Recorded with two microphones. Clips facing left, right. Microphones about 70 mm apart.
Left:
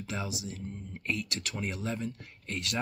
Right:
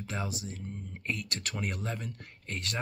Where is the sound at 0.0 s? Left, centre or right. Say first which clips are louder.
Even; right.